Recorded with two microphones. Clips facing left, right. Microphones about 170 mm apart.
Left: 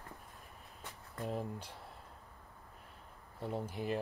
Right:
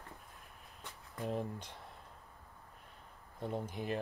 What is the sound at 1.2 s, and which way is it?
Speech, 5° left (ahead or behind).